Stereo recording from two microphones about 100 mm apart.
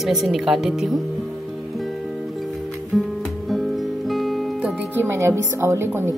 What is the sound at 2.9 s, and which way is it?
Music, centre (ahead or behind).